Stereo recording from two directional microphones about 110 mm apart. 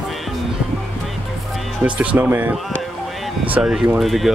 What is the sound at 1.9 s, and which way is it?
Speech, 15° right (ahead or behind).